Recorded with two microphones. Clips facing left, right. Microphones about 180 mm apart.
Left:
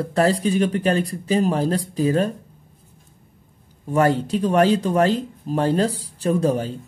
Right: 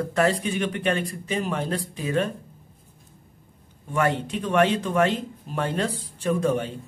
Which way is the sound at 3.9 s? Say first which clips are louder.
Left 6 dB; 40° left (ahead or behind).